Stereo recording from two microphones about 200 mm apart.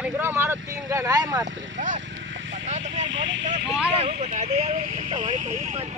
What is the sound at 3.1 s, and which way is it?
Vehicle, 65° right (ahead or behind).